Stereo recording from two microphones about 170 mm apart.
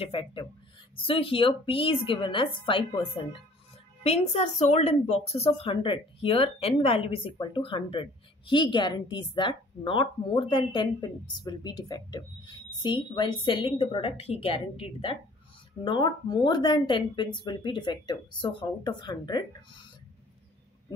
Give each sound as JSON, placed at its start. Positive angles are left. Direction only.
{"t": 0.0, "sound": "speech", "side_deg": 30}
{"t": 4.0, "sound": "speech", "side_deg": 40}